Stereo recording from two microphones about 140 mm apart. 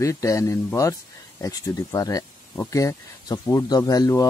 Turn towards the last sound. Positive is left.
turn(degrees=25)  # may be behind; listen again after turning